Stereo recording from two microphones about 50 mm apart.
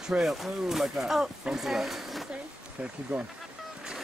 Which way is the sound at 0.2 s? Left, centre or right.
Centre.